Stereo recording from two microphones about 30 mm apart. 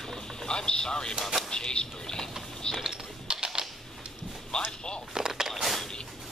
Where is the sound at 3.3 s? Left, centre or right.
Right.